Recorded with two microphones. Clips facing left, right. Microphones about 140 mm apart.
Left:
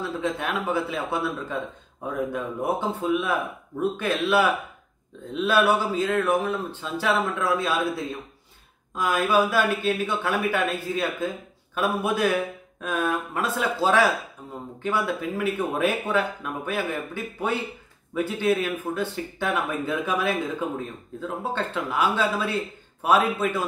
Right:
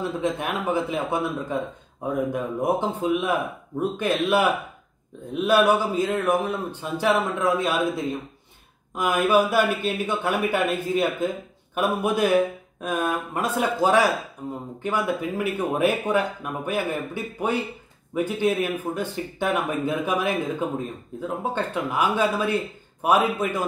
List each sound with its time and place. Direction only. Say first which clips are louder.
0.0 s speech: right 2 dB; 15° right (ahead or behind)
21.4 s speech: right 1 dB; 15° right (ahead or behind)